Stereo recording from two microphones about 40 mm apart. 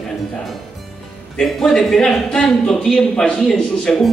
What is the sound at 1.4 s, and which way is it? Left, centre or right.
Speech, centre.